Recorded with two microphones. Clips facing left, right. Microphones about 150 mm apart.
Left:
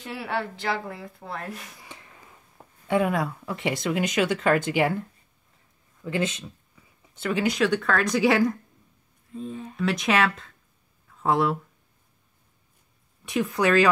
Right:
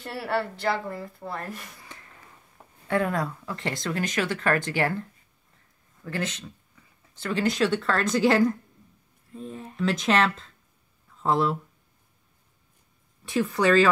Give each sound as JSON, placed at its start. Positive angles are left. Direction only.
{"t": 0.0, "sound": "speech", "side_deg": 0}
{"t": 1.8, "sound": "a sound", "side_deg": 15}
{"t": 2.9, "sound": "speech", "side_deg": 15}
{"t": 6.0, "sound": "speech", "side_deg": 20}
{"t": 7.2, "sound": "speech", "side_deg": 5}
{"t": 9.8, "sound": "speech", "side_deg": 5}
{"t": 13.3, "sound": "speech", "side_deg": 0}